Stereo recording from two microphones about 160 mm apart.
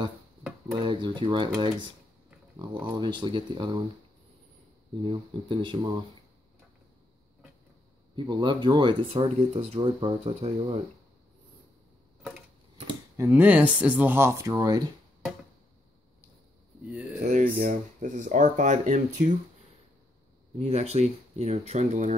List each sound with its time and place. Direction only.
0.7 s speech: 30° right (ahead or behind)
3.0 s speech: 30° right (ahead or behind)
5.0 s speech: 30° right (ahead or behind)
8.2 s speech: 30° right (ahead or behind)
13.2 s speech: 10° right (ahead or behind)
16.8 s speech: 5° right (ahead or behind)
17.2 s speech: 55° right (ahead or behind)
20.5 s speech: 40° right (ahead or behind)